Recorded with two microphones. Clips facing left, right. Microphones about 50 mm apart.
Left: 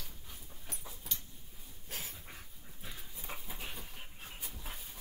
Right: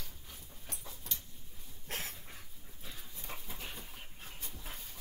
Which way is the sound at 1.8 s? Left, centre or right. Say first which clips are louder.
Right 4 dB; right.